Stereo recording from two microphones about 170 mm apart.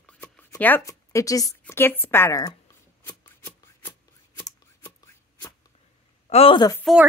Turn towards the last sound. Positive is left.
turn(degrees=0)  # may be behind; listen again after turning